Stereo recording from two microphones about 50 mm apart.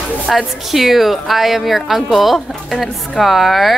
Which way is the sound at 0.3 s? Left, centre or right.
Centre.